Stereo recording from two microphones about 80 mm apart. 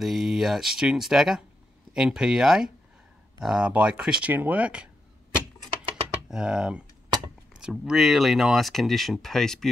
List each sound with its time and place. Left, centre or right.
0.0 s speech: centre
6.2 s speech: centre